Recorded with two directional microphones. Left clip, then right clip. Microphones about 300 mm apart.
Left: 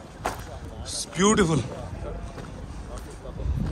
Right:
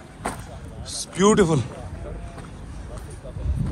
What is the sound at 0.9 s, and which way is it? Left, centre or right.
Speech, centre.